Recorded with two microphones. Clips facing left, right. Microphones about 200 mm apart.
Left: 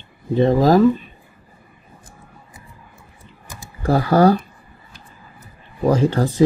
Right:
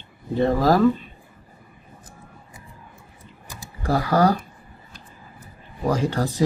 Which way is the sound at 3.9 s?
30° left (ahead or behind).